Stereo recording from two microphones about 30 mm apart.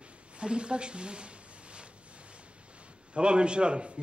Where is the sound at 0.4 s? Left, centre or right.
Right.